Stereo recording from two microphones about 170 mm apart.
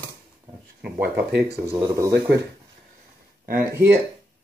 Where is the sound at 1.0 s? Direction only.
70° right (ahead or behind).